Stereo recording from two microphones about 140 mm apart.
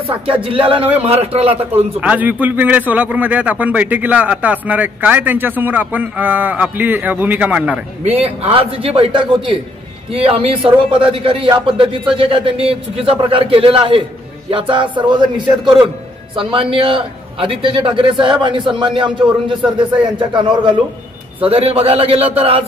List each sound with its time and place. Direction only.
0.0 s a man's voice: 40° right (ahead or behind)
2.0 s a man's voice: 10° right (ahead or behind)
8.0 s a man's voice: 45° right (ahead or behind)
21.5 s a man's voice: 45° right (ahead or behind)